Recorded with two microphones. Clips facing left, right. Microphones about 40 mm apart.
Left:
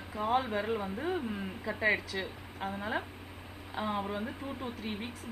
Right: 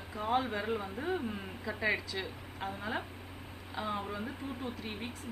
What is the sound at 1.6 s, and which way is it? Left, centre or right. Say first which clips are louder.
Speech: left 3 dB; centre.